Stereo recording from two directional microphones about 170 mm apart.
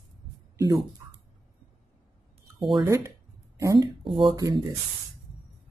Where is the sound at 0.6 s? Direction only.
20° right (ahead or behind).